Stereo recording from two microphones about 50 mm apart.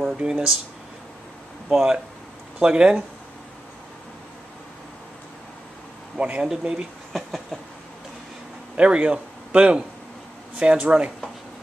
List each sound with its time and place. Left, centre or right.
0.2 s speech: right
1.7 s speech: centre
6.1 s speech: right
6.4 s speech: centre
7.1 s a sound: centre
8.7 s speech: right